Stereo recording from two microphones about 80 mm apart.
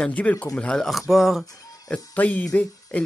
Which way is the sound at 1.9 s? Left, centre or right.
Left.